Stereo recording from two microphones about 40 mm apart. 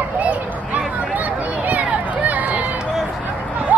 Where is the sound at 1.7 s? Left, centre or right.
Right.